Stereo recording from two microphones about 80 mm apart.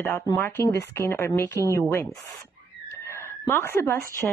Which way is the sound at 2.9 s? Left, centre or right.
Left.